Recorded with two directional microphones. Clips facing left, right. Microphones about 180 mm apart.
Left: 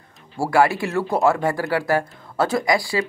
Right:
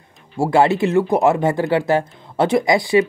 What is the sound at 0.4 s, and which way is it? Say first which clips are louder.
Speech: right 3 dB; 20° right (ahead or behind).